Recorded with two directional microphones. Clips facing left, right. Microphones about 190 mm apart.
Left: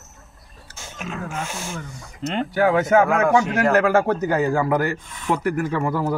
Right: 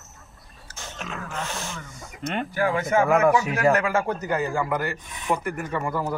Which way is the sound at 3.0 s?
5° right (ahead or behind).